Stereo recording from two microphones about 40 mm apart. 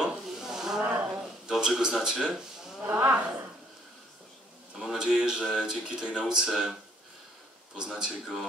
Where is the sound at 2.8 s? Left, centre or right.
Right.